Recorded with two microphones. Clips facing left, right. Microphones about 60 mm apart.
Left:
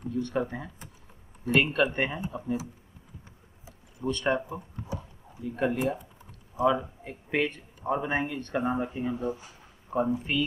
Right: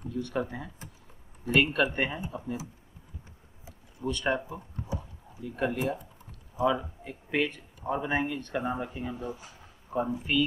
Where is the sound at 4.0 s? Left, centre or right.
Centre.